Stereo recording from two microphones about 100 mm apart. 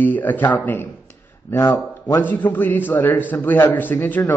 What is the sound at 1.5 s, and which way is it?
Speech, 30° left (ahead or behind).